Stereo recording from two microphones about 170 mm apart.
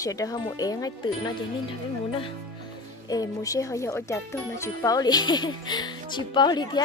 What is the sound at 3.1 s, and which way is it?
Speech, 20° left (ahead or behind).